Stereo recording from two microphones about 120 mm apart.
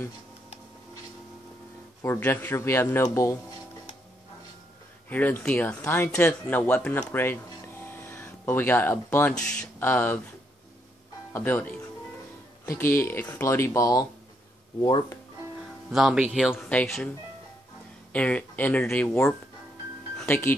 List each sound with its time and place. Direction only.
2.1 s speech: 15° left (ahead or behind)
5.1 s speech: 15° left (ahead or behind)
7.0 s music: 20° left (ahead or behind)
9.4 s speech: 10° left (ahead or behind)
11.3 s speech: 15° left (ahead or behind)
12.7 s speech: 20° left (ahead or behind)
15.9 s speech: 5° right (ahead or behind)
16.5 s speech: 10° left (ahead or behind)
18.1 s speech: 10° left (ahead or behind)
20.2 s speech: 20° left (ahead or behind)